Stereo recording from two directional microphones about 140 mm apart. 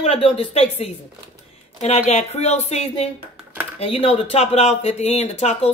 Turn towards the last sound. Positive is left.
turn(degrees=50)  # may be behind; listen again after turning